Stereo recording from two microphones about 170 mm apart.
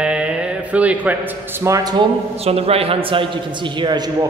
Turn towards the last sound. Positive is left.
turn(degrees=-25)  # may be behind; listen again after turning